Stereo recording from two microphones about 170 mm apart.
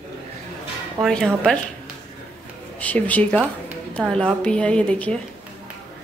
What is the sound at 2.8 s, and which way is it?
Speech, 10° left (ahead or behind).